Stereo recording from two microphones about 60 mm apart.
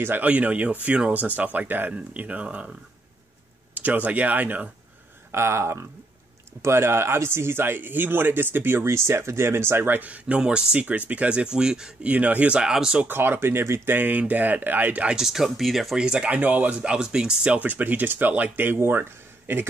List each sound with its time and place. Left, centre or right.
0.2 s speech: right
3.7 s speech: right
5.3 s speech: right
9.9 s speech: right
12.1 s speech: right; by 13.0 s centre
13.2 s speech: right
15.0 s speech: centre
16.0 s speech: centre
16.3 s speech: right
17.5 s speech: right